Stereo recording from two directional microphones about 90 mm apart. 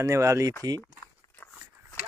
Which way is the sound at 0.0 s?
35° right (ahead or behind).